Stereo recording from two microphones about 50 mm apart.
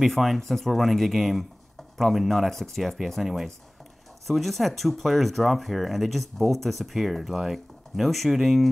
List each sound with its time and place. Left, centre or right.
0.0 s speech: centre